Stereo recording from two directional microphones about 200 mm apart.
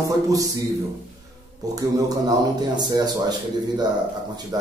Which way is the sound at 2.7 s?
20° right (ahead or behind).